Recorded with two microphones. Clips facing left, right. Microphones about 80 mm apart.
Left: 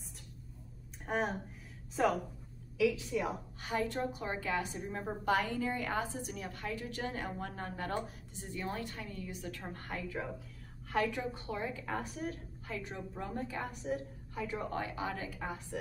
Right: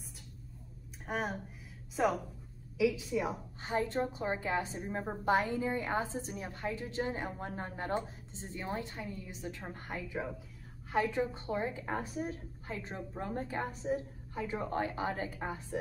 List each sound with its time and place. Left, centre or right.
1.0 s speech: centre
2.8 s a woman's voice: centre
3.6 s a woman's voice: right
10.9 s a woman's voice: right